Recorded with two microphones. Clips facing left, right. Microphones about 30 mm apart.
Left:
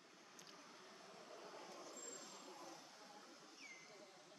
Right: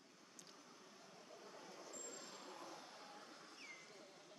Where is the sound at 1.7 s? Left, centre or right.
Centre.